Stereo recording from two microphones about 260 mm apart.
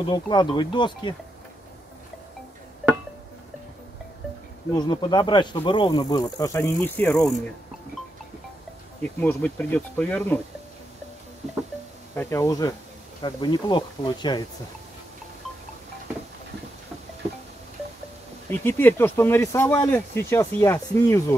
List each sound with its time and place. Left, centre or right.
0.0 s speech: centre
4.7 s speech: centre
9.2 s speech: centre
12.2 s speech: centre
18.5 s speech: centre